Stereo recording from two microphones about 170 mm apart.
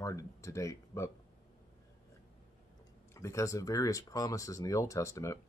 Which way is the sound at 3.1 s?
15° left (ahead or behind).